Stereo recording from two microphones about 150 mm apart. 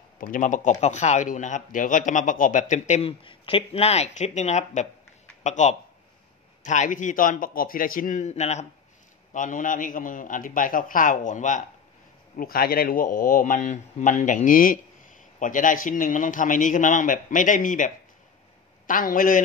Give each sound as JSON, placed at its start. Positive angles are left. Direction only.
{"t": 0.2, "sound": "speech", "side_deg": 60}
{"t": 3.1, "sound": "speech", "side_deg": 35}
{"t": 9.3, "sound": "speech", "side_deg": 60}
{"t": 12.4, "sound": "speech", "side_deg": 75}